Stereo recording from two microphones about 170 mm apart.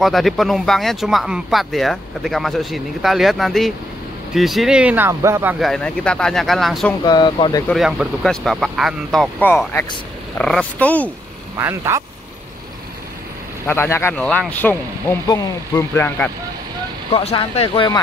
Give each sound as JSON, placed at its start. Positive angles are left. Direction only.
{"t": 0.0, "sound": "speech", "side_deg": 0}
{"t": 5.6, "sound": "speech", "side_deg": 5}
{"t": 7.1, "sound": "speech", "side_deg": 25}
{"t": 7.7, "sound": "speech", "side_deg": 0}
{"t": 10.3, "sound": "speech", "side_deg": 5}
{"t": 11.5, "sound": "speech", "side_deg": -15}
{"t": 13.7, "sound": "speech", "side_deg": 15}
{"t": 17.1, "sound": "speech", "side_deg": 35}